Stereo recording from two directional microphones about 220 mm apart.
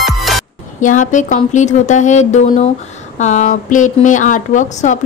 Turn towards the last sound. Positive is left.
turn(degrees=35)  # may be behind; listen again after turning